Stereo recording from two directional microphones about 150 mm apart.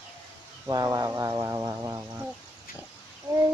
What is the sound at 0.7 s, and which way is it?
Speech, 25° right (ahead or behind).